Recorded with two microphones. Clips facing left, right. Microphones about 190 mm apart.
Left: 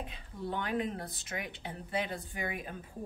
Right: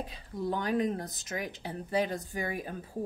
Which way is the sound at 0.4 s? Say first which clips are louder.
Right 5 dB; 40° right (ahead or behind).